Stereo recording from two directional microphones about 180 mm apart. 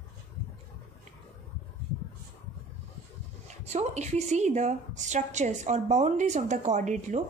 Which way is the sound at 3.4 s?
40° right (ahead or behind).